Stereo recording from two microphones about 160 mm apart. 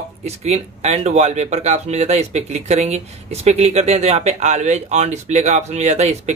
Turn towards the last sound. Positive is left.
turn(degrees=-45)  # may be behind; listen again after turning